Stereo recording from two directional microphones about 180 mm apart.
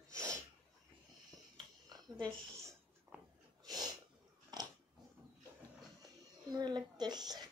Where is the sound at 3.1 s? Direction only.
10° right (ahead or behind).